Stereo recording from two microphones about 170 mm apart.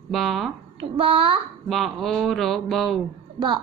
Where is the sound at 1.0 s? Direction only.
30° right (ahead or behind).